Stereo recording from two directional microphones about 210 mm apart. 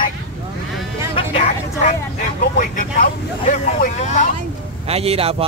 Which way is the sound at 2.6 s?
40° left (ahead or behind).